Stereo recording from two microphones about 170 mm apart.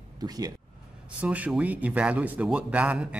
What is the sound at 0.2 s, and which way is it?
Speech, 25° right (ahead or behind).